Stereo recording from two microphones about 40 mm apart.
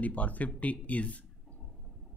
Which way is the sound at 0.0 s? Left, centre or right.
Left.